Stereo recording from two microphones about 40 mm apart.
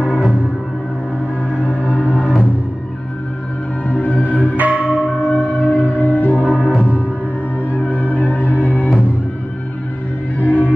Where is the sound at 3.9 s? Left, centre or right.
Left.